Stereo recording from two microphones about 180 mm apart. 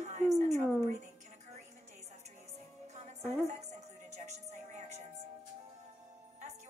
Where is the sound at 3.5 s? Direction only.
40° right (ahead or behind).